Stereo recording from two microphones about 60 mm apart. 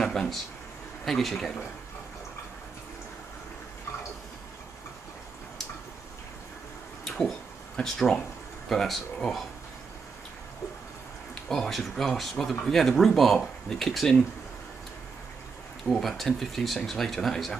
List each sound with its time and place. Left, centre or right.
0.0 s speech: centre
7.1 s a sound: centre
7.7 s speech: centre
11.4 s speech: centre
15.9 s speech: centre